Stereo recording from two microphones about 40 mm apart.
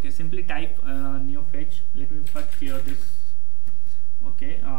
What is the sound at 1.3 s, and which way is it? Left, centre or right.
Speech, right.